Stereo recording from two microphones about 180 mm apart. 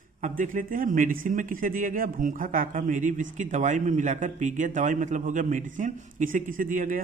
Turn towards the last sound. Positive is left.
turn(degrees=-50)  # may be behind; listen again after turning